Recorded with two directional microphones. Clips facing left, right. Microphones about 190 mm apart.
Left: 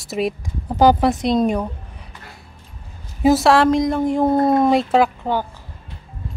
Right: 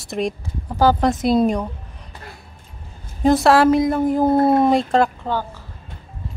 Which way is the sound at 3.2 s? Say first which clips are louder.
Even; centre (ahead or behind).